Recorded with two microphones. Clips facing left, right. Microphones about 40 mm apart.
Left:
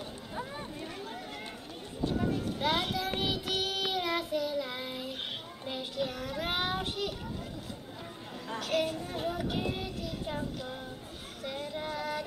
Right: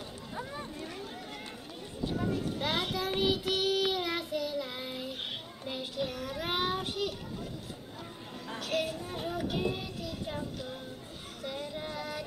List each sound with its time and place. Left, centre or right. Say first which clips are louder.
0.4 s a sound: even; centre
2.6 s child singing: left 3 dB; centre
8.5 s child singing: left 2 dB; centre
11.4 s female singing: left 1 dB; centre